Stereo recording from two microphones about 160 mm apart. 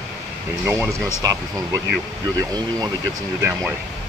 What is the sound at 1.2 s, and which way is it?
Speech, 20° right (ahead or behind).